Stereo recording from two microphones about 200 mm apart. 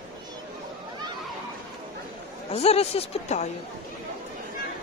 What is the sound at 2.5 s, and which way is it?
Speech, 30° left (ahead or behind).